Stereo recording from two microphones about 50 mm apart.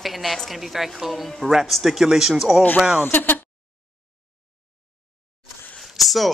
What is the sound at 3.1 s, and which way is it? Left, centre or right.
Speech, left.